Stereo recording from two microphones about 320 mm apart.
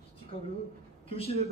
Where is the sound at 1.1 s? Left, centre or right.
Centre.